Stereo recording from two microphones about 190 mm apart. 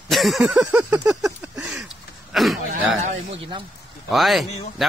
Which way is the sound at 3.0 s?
40° right (ahead or behind).